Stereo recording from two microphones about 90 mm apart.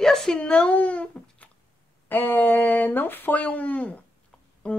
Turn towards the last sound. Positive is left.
turn(degrees=15)  # may be behind; listen again after turning